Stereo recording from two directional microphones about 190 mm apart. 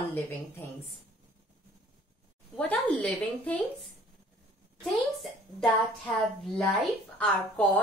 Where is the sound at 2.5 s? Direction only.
5° left (ahead or behind).